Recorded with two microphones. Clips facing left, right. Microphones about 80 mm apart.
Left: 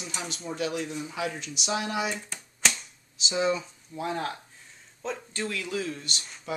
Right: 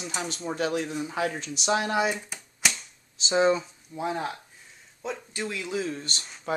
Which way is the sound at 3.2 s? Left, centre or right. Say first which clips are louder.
Right 4 dB; right.